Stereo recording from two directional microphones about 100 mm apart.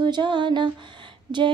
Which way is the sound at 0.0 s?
50° right (ahead or behind).